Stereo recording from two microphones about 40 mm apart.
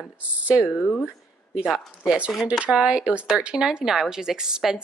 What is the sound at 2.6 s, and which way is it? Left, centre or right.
A woman's voice, right.